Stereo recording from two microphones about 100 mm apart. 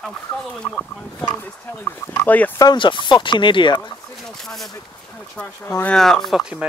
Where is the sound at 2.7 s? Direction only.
55° left (ahead or behind).